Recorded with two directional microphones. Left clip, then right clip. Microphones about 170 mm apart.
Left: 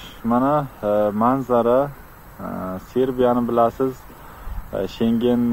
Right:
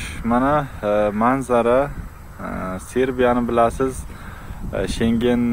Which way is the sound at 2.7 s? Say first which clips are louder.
Even; centre (ahead or behind).